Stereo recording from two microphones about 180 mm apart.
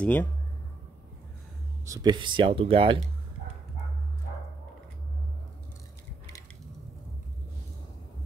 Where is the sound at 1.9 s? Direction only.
20° right (ahead or behind).